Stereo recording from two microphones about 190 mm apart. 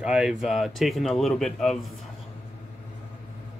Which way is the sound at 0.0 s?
5° right (ahead or behind).